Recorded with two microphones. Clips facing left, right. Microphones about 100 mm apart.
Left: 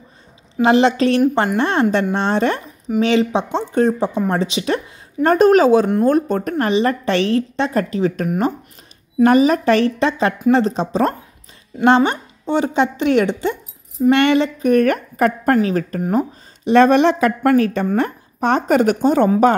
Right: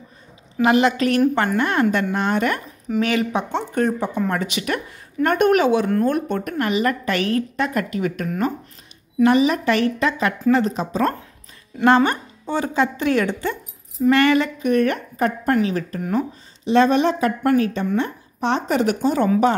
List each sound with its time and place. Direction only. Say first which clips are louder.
0.6 s a woman's voice: left 3 dB; 30° left (ahead or behind)
9.2 s a woman's voice: left 3 dB; 40° left (ahead or behind); by 14.5 s 25° left (ahead or behind)
14.6 s a woman's voice: left 4 dB; 45° left (ahead or behind)
16.6 s speech: left 4 dB; 55° left (ahead or behind)
17.8 s a woman's voice: left 3 dB; 50° left (ahead or behind)